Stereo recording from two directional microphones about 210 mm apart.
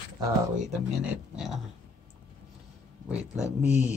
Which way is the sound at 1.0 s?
5° right (ahead or behind).